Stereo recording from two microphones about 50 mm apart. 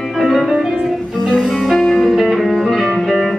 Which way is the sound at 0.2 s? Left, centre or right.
Centre.